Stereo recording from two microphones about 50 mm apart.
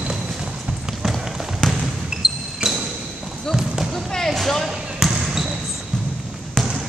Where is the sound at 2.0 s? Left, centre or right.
Centre.